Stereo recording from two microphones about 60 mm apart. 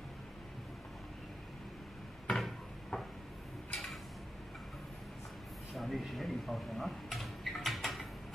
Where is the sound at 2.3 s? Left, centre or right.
Centre.